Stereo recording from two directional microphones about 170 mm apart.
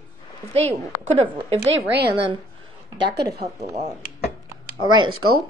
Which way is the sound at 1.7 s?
80° right.